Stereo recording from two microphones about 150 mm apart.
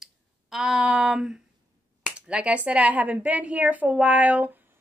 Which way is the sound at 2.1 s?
5° right (ahead or behind).